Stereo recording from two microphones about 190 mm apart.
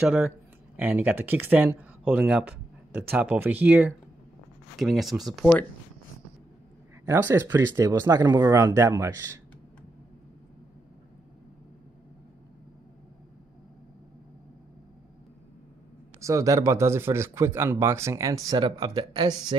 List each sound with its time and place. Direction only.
0.0 s speech: 10° right (ahead or behind)
7.1 s speech: 10° right (ahead or behind)
16.2 s speech: 15° right (ahead or behind)